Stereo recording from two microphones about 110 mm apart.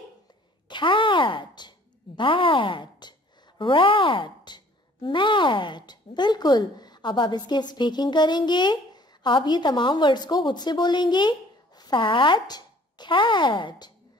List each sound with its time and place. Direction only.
0.7 s a woman's voice: 45° left (ahead or behind)